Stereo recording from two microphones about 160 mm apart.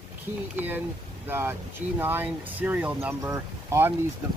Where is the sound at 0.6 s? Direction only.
10° right (ahead or behind).